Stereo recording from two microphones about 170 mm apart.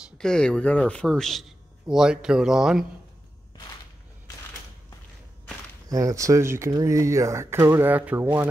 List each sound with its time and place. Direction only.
0.2 s speech: 5° left (ahead or behind)
5.9 s speech: 20° right (ahead or behind)